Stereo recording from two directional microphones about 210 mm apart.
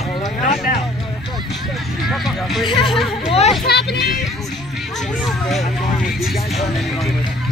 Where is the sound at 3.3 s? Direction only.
30° left (ahead or behind).